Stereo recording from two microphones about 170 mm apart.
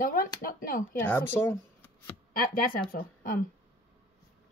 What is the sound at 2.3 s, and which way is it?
Speech, 55° left (ahead or behind).